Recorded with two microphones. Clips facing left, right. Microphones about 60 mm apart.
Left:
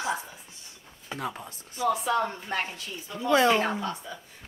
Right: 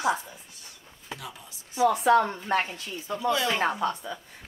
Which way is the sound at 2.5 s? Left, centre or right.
Right.